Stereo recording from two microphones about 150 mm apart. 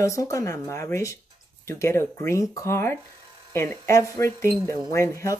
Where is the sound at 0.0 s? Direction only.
20° left (ahead or behind).